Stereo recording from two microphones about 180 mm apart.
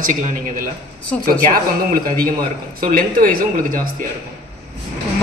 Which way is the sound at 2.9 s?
50° right (ahead or behind).